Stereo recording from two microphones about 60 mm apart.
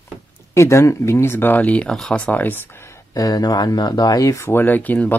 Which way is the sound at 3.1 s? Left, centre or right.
Left.